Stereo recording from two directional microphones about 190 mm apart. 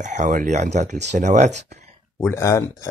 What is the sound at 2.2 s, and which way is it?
Speech, 15° left (ahead or behind).